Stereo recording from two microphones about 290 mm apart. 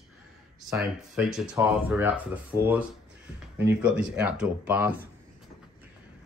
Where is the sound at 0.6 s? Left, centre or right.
Centre.